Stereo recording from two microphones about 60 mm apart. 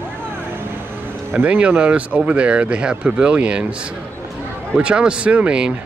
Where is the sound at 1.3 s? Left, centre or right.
Right.